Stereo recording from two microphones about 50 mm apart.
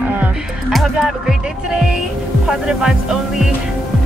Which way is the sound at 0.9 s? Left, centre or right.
Centre.